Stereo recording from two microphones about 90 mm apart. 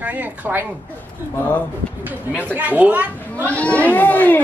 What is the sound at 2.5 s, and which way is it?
Speech, 20° right (ahead or behind).